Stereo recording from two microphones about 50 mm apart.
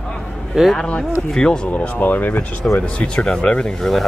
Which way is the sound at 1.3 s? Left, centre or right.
Centre.